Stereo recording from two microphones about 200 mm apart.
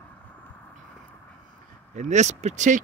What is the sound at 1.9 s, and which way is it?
Speech, 35° right (ahead or behind).